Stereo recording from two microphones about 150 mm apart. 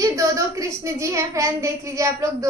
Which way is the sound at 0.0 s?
20° right (ahead or behind).